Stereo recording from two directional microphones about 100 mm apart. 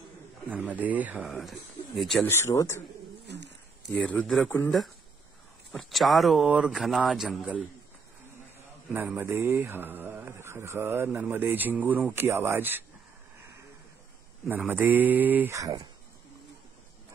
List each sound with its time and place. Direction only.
0.5 s speech: 15° right (ahead or behind)
2.2 s speech: 30° left (ahead or behind)
4.0 s speech: 15° left (ahead or behind)
5.7 s speech: centre (ahead or behind)
8.9 s speech: 20° right (ahead or behind)
14.7 s speech: 20° right (ahead or behind)
15.5 s speech: 35° right (ahead or behind)